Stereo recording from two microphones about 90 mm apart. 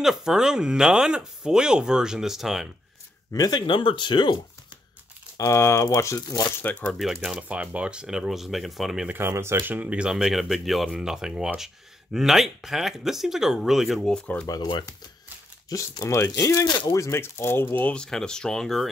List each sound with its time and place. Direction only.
0.0 s speech: 5° right (ahead or behind)
3.3 s speech: 45° left (ahead or behind)
5.4 s speech: 35° left (ahead or behind)
6.6 s speech: 20° left (ahead or behind)
7.0 s speech: centre (ahead or behind)
9.1 s speech: 25° right (ahead or behind); by 14.5 s 15° left (ahead or behind)
16.0 s speech: 35° left (ahead or behind); by 18.9 s 5° left (ahead or behind)